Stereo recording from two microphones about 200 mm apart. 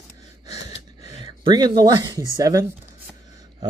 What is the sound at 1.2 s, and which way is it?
Speech, 20° right (ahead or behind).